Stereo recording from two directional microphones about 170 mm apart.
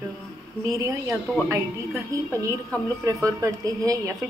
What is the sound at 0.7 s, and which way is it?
A woman's voice, 20° right (ahead or behind).